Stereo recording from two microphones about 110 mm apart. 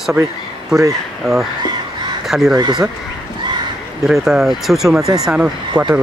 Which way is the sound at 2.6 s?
40° right (ahead or behind).